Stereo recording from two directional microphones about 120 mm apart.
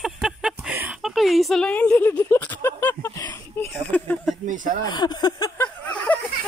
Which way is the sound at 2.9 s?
30° left (ahead or behind).